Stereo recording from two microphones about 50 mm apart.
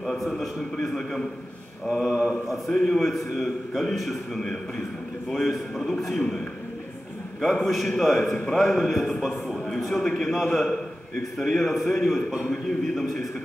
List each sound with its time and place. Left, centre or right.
0.0 s a man's voice: centre
1.9 s mantra: centre
2.4 s a man's voice: centre
7.4 s a man's voice: centre
12.3 s mantra: centre
12.6 s a man's voice: centre